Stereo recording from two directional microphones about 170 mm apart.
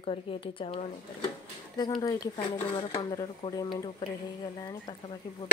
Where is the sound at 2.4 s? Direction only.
30° left (ahead or behind).